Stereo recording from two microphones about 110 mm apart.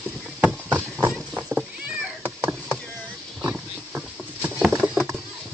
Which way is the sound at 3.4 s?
10° right (ahead or behind).